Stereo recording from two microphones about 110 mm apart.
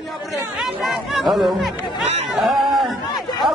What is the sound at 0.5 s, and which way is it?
Speech, 5° right (ahead or behind).